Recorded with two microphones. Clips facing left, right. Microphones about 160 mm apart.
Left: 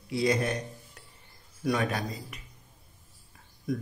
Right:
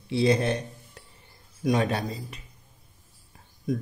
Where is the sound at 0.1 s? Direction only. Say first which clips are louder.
Right 4 dB; 30° right (ahead or behind).